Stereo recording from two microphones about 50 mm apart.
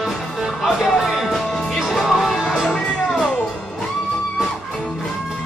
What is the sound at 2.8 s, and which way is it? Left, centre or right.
Music, centre.